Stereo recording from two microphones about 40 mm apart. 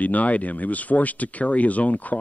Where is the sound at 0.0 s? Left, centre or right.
Left.